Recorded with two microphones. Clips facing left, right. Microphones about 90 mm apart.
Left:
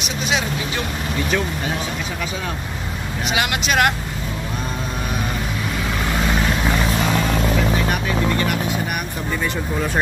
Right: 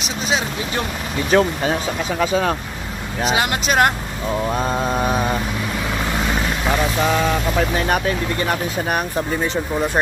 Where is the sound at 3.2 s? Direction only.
35° right (ahead or behind).